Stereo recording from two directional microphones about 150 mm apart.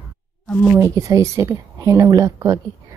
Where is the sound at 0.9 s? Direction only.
20° right (ahead or behind).